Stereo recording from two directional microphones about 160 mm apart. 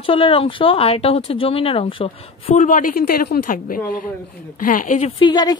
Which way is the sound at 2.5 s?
50° left (ahead or behind).